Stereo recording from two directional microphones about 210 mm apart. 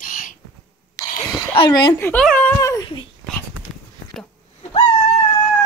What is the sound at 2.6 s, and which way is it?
Speech, 15° left (ahead or behind).